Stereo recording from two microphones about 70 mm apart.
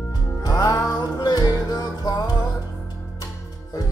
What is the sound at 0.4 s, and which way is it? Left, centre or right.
Music, left.